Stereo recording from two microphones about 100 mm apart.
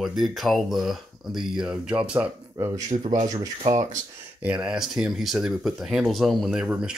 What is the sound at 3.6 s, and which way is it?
Speech, 45° right (ahead or behind).